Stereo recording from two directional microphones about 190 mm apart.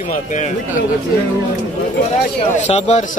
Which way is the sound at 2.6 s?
35° left (ahead or behind).